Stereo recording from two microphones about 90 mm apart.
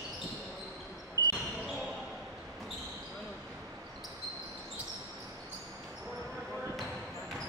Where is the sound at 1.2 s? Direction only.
40° left (ahead or behind).